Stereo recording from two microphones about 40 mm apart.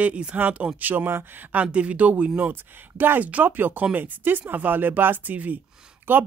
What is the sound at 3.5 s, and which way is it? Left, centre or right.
Speech, right.